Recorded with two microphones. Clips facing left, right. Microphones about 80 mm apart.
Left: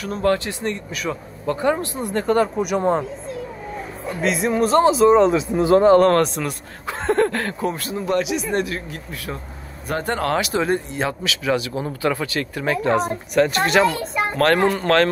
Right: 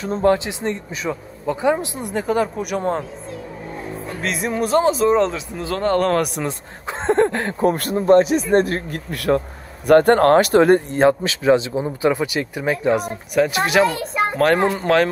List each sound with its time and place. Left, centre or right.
0.0 s speech: right
1.4 s speech: centre
4.2 s speech: centre
5.3 s speech: left
5.9 s speech: centre
6.2 s speech: centre
7.6 s speech: right
8.1 s speech: right
9.8 s speech: right; by 15.0 s centre